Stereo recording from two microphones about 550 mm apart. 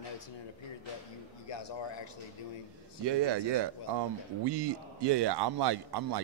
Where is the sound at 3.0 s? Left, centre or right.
Right.